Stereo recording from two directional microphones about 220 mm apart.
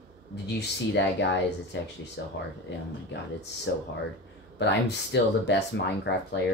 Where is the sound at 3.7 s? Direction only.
50° left (ahead or behind).